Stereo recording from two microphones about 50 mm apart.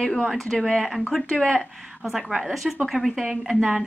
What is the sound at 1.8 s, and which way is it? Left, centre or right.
A woman's voice, centre.